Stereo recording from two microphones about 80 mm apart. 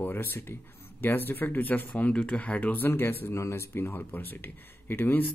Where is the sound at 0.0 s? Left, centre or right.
Left.